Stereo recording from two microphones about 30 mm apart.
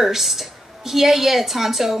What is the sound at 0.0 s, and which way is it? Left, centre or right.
A woman's voice, centre.